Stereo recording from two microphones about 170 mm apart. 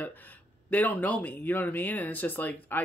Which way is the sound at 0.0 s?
10° left (ahead or behind).